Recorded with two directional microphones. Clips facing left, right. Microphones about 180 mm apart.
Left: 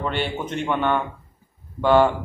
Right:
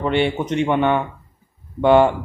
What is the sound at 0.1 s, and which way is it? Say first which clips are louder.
Speech: right 7 dB; 70° right (ahead or behind).